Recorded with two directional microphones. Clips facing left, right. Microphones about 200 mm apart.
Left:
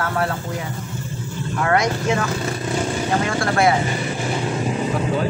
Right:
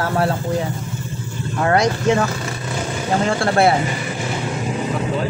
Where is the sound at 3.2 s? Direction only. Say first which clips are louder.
Right 4 dB; 30° right (ahead or behind).